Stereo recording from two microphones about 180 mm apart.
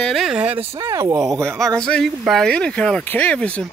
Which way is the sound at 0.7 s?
15° right (ahead or behind).